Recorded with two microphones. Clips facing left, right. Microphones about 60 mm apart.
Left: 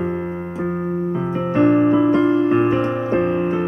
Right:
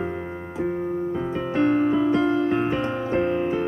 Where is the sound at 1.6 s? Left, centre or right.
Centre.